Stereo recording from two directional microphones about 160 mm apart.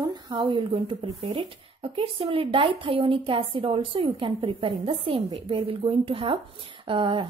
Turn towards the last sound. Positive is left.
turn(degrees=-35)  # may be behind; listen again after turning